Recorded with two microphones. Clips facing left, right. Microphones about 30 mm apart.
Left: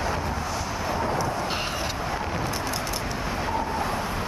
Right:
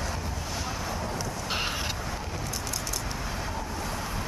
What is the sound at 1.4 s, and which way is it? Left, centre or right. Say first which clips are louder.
Vehicle: left 2 dB; centre.